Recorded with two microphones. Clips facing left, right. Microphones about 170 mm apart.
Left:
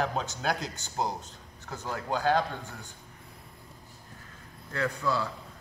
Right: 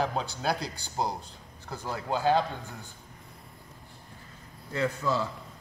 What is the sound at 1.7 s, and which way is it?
Speech, 10° right (ahead or behind).